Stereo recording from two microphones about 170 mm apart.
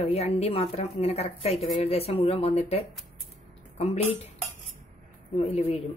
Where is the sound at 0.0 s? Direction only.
40° left (ahead or behind).